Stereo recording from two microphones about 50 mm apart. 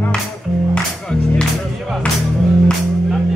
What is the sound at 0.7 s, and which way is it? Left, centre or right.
Music, centre.